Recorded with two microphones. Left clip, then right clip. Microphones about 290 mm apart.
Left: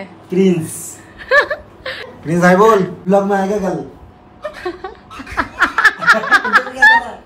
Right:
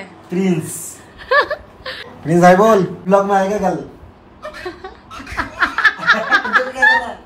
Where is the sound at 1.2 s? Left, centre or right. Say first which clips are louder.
Left 2 dB; centre.